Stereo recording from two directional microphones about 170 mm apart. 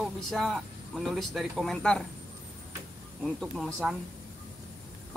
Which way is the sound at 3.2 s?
Centre (ahead or behind).